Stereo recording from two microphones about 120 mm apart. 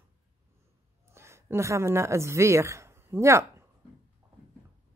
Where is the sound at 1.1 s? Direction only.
20° right (ahead or behind).